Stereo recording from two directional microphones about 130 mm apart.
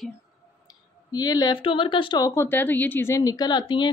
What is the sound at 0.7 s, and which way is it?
Speech, 30° left (ahead or behind).